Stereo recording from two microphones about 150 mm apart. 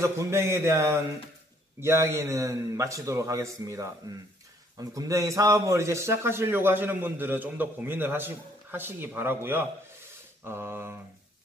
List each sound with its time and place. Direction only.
0.0 s a man's voice: 20° right (ahead or behind)